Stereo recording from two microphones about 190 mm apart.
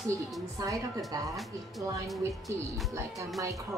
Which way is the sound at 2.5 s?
15° right (ahead or behind).